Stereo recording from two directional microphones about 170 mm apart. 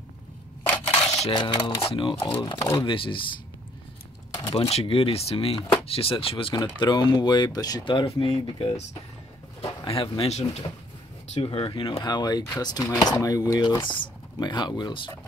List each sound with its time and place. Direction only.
1.3 s speech: 25° left (ahead or behind)
2.5 s speech: 15° left (ahead or behind)
2.9 s speech: 30° left (ahead or behind)
4.5 s speech: 35° left (ahead or behind)